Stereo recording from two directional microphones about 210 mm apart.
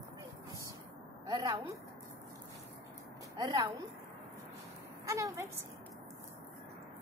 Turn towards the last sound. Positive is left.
turn(degrees=-15)  # may be behind; listen again after turning